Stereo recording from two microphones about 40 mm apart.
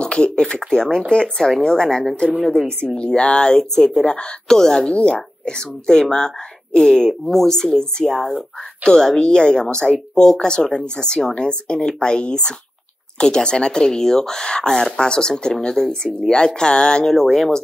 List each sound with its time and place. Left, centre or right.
0.0 s a sound: left
0.4 s speech: centre
3.2 s speech: left
3.5 s speech: centre
4.0 s speech: left
17.1 s speech: centre